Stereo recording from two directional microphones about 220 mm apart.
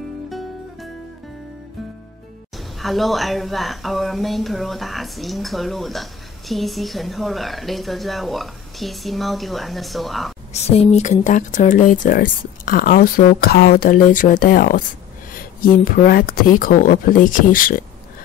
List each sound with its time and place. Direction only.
2.5 s speech: centre (ahead or behind)
10.5 s speech: 30° left (ahead or behind)